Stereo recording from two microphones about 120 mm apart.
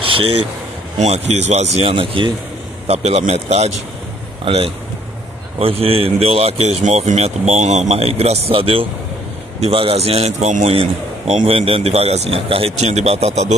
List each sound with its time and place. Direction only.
0.0 s a sound: 50° right (ahead or behind)
0.9 s a man's voice: 65° right (ahead or behind); by 2.3 s 45° right (ahead or behind)
2.9 s a man's voice: 65° right (ahead or behind)
6.8 s a man's voice: 70° right (ahead or behind)